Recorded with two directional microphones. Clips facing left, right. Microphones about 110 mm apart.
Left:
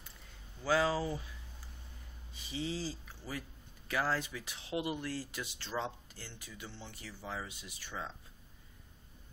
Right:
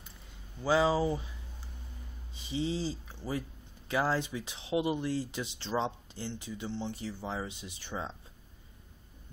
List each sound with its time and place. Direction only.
0.6 s speech: 20° right (ahead or behind)
2.3 s speech: 25° right (ahead or behind)